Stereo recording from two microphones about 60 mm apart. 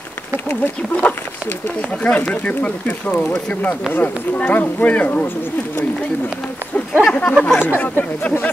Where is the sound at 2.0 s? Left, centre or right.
Left.